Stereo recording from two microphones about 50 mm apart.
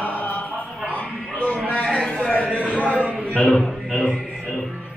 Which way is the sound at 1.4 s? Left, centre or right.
Left.